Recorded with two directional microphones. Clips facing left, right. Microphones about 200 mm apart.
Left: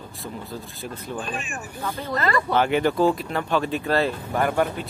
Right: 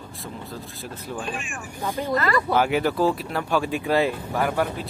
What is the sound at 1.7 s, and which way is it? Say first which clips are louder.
Speech: right 4 dB; 15° right (ahead or behind).